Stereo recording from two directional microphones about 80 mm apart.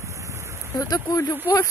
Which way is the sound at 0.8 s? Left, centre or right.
Left.